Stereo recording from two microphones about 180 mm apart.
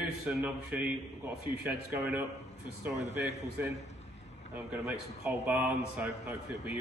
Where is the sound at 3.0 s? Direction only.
75° left (ahead or behind).